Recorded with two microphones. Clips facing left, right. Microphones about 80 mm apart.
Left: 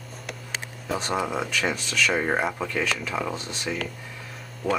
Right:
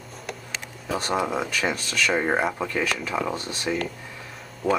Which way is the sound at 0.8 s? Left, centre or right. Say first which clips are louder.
Right 2 dB; centre.